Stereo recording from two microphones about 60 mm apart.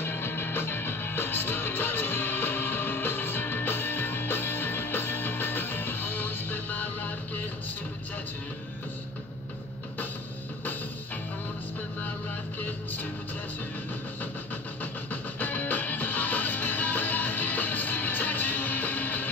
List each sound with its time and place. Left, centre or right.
0.0 s music: left
12.5 s music: left
14.8 s music: left